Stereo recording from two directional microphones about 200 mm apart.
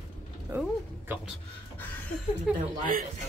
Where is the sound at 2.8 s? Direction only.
45° right (ahead or behind).